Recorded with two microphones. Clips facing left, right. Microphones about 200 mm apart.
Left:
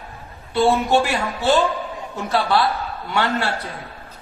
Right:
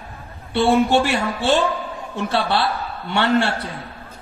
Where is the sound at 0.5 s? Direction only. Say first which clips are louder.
Right 1 dB; 30° right (ahead or behind).